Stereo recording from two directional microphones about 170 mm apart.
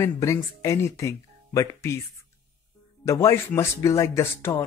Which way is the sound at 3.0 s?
15° left (ahead or behind).